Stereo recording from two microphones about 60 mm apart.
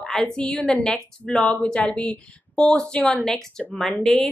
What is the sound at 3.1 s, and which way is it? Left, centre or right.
A woman's voice, centre.